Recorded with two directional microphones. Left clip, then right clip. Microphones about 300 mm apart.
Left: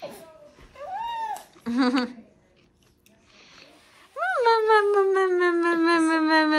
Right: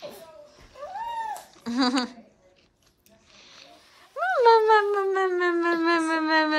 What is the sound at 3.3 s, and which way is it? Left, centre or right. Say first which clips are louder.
Cat: right 1 dB; centre.